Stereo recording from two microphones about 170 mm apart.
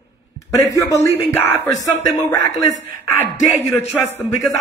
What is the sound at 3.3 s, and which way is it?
Speech, 45° left (ahead or behind).